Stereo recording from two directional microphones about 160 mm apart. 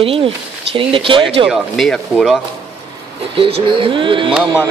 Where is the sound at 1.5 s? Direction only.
Centre (ahead or behind).